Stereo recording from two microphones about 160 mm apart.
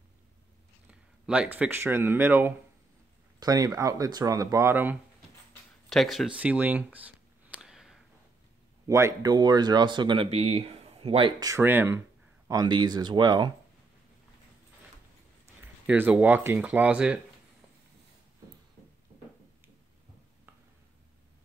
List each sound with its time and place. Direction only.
1.2 s speech: 5° right (ahead or behind)
5.9 s a sound: centre (ahead or behind)
8.8 s speech: 20° right (ahead or behind)
12.4 s speech: 25° right (ahead or behind)
15.9 s speech: 10° right (ahead or behind)